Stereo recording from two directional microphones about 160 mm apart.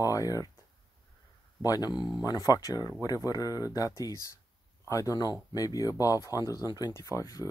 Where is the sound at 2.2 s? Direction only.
25° left (ahead or behind).